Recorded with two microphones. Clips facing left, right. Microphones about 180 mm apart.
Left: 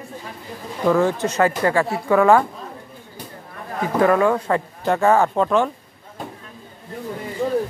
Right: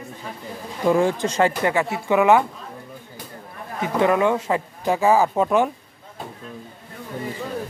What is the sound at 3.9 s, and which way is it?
Speech, 20° right (ahead or behind).